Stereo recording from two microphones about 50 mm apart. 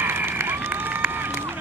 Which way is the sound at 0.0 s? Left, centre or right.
Right.